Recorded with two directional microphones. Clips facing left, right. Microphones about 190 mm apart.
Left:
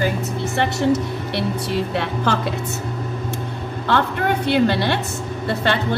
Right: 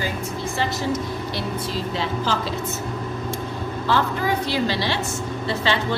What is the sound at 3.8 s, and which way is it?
A woman's voice, 60° left (ahead or behind).